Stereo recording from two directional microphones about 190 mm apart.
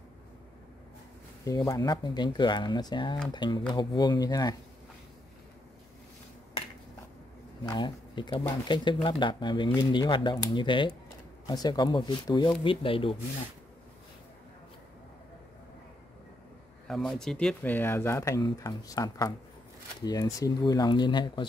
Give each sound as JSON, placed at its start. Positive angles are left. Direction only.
{"t": 1.7, "sound": "speech", "side_deg": 20}
{"t": 7.6, "sound": "speech", "side_deg": 25}
{"t": 16.8, "sound": "speech", "side_deg": 0}